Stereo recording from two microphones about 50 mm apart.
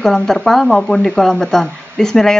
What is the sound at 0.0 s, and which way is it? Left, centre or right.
A woman's voice, centre.